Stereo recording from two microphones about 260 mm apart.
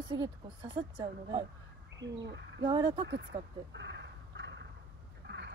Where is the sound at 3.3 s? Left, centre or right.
Right.